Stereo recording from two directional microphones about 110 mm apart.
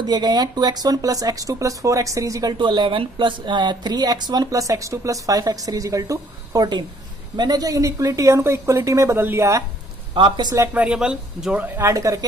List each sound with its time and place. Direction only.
0.0 s speech: 40° right (ahead or behind)
2.5 s a woman's voice: 45° right (ahead or behind); by 9.7 s 25° right (ahead or behind)
10.1 s speech: 45° right (ahead or behind)
10.7 s speech: 10° right (ahead or behind); by 12.3 s 30° right (ahead or behind)